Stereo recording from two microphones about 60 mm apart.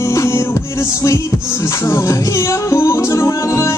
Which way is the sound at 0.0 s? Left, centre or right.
Left.